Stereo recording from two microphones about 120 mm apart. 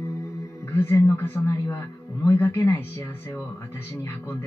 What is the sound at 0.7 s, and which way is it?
Speech, 20° left (ahead or behind).